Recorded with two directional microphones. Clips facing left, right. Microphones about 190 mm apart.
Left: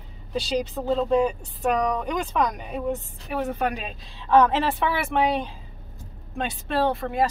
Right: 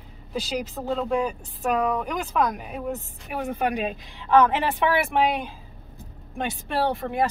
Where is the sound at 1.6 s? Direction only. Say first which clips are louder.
Left 1 dB; 5° right (ahead or behind).